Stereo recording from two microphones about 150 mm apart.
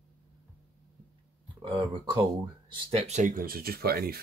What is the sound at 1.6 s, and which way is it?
Speech, 35° right (ahead or behind).